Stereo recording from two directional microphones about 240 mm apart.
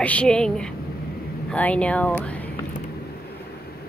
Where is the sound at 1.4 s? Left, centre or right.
Centre.